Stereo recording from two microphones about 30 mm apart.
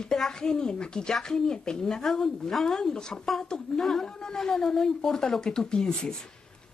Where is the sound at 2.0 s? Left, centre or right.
Centre.